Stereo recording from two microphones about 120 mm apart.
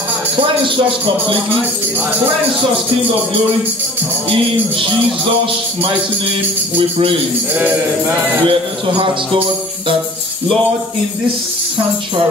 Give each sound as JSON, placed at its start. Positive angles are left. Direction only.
{"t": 8.5, "sound": "speech", "side_deg": -45}